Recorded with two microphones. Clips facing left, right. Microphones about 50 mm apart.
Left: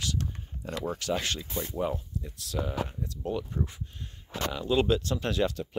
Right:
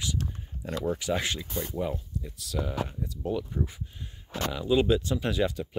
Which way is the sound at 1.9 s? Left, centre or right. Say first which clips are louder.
Even; centre.